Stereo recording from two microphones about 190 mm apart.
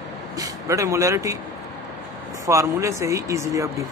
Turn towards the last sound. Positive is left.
turn(degrees=-15)  # may be behind; listen again after turning